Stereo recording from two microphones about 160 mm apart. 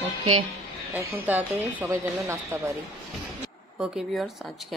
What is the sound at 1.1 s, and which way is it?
A woman's voice, 10° right (ahead or behind).